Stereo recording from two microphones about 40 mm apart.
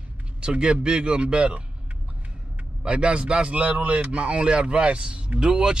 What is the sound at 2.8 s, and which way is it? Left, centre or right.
Speech, right.